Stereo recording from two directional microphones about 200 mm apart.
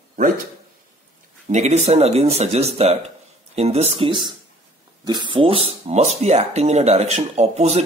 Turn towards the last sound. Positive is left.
turn(degrees=-35)  # may be behind; listen again after turning